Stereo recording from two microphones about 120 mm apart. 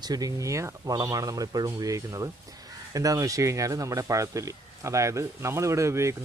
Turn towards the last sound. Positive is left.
turn(degrees=-25)  # may be behind; listen again after turning